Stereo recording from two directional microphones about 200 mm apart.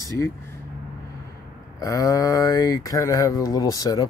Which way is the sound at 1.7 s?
15° left (ahead or behind).